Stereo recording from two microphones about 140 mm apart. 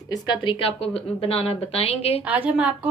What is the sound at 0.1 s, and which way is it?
A woman's voice, 35° left (ahead or behind).